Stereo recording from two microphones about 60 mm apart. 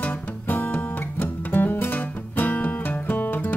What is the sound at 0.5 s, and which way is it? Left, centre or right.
Music, left.